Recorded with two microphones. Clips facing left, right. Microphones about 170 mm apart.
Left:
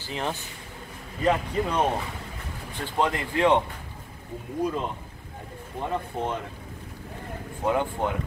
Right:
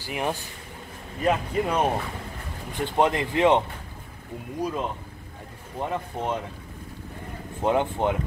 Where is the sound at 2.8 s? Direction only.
20° right (ahead or behind).